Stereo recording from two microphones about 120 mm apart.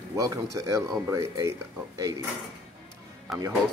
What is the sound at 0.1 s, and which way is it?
Speech, 25° right (ahead or behind).